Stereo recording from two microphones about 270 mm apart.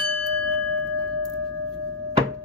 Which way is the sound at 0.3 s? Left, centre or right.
Right.